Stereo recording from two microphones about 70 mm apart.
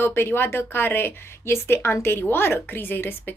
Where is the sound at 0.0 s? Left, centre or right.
Left.